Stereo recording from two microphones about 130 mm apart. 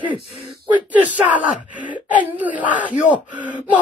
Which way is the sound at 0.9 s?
10° right (ahead or behind).